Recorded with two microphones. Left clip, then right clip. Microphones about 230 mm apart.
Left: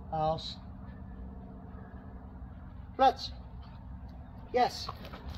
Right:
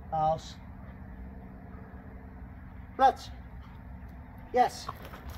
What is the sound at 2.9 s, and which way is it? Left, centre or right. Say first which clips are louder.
Speech: right 2 dB; centre.